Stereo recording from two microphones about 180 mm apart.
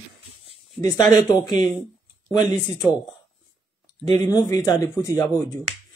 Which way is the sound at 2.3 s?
20° left (ahead or behind).